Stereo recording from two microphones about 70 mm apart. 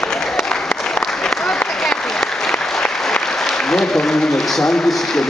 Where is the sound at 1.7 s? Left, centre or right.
Centre.